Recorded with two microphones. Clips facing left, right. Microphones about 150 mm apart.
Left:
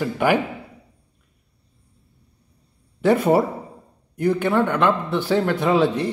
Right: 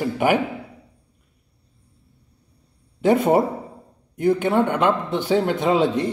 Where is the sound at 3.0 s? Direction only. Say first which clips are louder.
Even; 20° right (ahead or behind).